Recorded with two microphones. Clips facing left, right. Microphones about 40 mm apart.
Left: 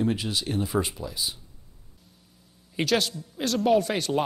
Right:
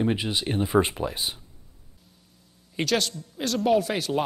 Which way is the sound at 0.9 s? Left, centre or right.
Right.